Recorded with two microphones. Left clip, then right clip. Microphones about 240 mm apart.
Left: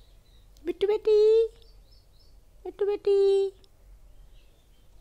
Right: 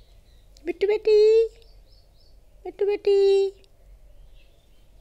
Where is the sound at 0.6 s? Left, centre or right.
Left.